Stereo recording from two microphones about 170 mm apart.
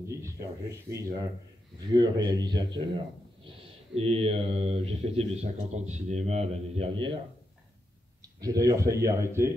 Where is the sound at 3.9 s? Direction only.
35° right (ahead or behind).